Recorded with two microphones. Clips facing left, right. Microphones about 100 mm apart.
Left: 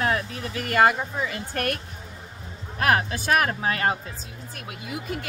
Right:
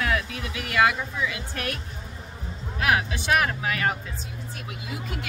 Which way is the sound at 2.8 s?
45° left (ahead or behind).